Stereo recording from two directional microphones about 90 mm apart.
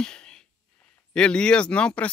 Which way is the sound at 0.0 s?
10° left (ahead or behind).